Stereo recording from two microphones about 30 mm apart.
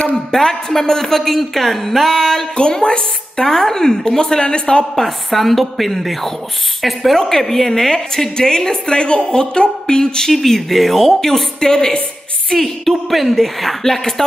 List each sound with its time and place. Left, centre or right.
0.1 s a woman's voice: centre
2.5 s speech: left
3.4 s a woman's voice: centre
4.3 s a woman's voice: left
4.9 s a woman's voice: centre
7.2 s a woman's voice: centre
8.4 s a woman's voice: left
10.7 s a woman's voice: centre
11.6 s a woman's voice: left
13.1 s a woman's voice: centre
13.8 s a woman's voice: centre